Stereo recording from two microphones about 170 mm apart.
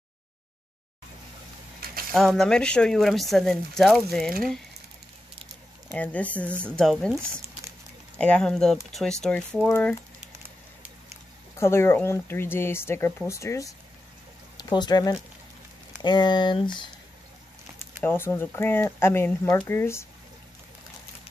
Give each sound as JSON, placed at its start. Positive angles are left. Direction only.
{"t": 1.8, "sound": "mechanisms", "side_deg": -60}
{"t": 2.1, "sound": "speech", "side_deg": 0}
{"t": 5.9, "sound": "speech", "side_deg": 10}
{"t": 8.2, "sound": "speech", "side_deg": 5}
{"t": 11.6, "sound": "speech", "side_deg": 15}
{"t": 18.0, "sound": "speech", "side_deg": 15}